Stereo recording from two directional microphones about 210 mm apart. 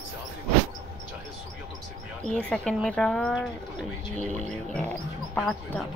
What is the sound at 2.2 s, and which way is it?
Speech, 5° left (ahead or behind).